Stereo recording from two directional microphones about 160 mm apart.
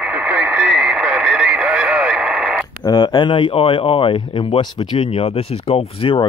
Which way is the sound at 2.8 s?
25° left (ahead or behind).